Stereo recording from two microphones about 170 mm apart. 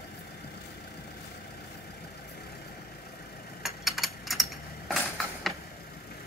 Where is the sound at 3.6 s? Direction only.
Centre (ahead or behind).